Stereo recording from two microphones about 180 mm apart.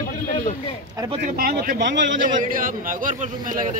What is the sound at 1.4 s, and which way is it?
Speech, 55° right (ahead or behind).